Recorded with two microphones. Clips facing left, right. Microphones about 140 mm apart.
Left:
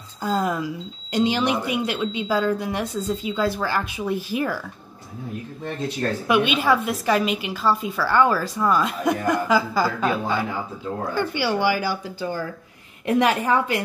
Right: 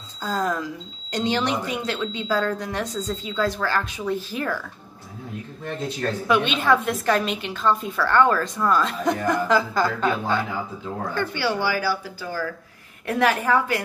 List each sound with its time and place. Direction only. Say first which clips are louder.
0.2 s a woman's voice: left 2 dB; 15° left (ahead or behind)
6.2 s a woman's voice: left 1 dB; 10° left (ahead or behind)